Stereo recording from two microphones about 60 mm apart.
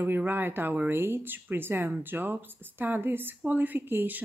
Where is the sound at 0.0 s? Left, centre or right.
Right.